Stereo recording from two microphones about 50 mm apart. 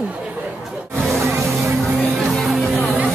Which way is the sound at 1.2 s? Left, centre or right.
Right.